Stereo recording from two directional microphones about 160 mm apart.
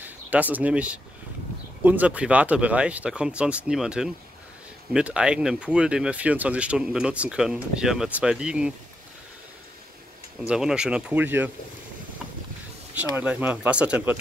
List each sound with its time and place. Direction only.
0.0 s speech: 10° right (ahead or behind)
10.4 s speech: 5° right (ahead or behind)
12.9 s speech: 10° right (ahead or behind)